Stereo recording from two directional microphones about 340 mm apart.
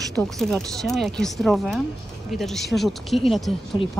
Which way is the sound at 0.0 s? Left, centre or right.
Centre.